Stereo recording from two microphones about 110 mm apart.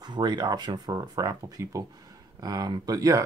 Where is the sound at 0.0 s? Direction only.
40° right (ahead or behind).